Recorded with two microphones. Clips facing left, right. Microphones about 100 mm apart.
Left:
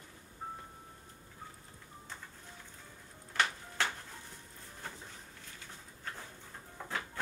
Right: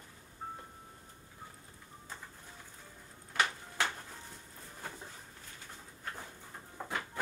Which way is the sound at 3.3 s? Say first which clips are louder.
Even; 5° right (ahead or behind).